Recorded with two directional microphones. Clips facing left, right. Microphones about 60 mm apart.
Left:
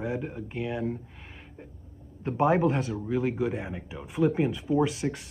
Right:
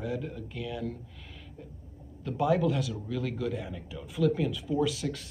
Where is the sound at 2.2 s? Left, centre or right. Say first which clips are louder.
Left 3 dB; left.